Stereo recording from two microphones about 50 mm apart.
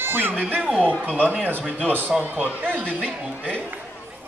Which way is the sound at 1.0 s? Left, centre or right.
Right.